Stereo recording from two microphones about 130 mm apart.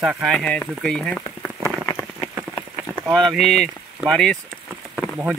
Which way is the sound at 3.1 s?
5° left (ahead or behind).